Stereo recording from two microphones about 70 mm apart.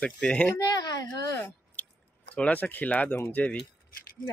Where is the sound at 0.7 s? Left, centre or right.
Left.